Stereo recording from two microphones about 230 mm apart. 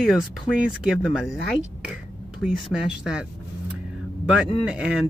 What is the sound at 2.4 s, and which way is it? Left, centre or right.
Speech, centre.